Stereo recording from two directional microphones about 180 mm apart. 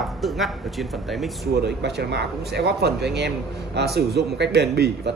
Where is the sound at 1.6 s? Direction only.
70° right (ahead or behind).